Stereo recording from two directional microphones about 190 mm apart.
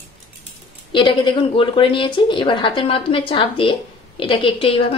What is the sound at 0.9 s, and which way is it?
A woman's voice, 25° left (ahead or behind).